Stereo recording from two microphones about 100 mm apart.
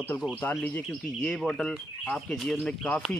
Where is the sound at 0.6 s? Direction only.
5° left (ahead or behind).